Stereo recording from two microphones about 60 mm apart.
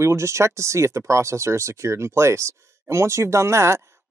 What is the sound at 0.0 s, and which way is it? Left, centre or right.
Speech, right.